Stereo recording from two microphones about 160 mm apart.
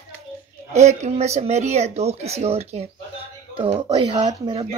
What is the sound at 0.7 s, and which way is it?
Speech, 45° right (ahead or behind).